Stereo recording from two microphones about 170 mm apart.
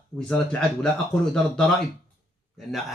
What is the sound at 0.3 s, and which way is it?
Speech, 5° left (ahead or behind).